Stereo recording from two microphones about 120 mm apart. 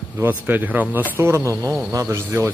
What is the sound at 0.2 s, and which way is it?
Speech, 15° right (ahead or behind).